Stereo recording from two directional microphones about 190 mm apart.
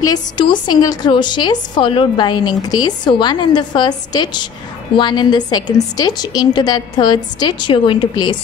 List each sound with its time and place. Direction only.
0.0 s a woman's voice: 20° left (ahead or behind)